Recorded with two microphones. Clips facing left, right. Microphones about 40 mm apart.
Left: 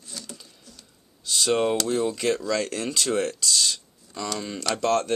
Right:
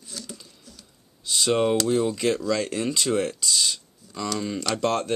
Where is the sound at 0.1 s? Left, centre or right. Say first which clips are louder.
Right 1 dB; centre.